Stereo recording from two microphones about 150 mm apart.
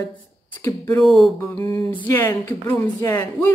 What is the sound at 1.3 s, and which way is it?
Speech, 15° left (ahead or behind).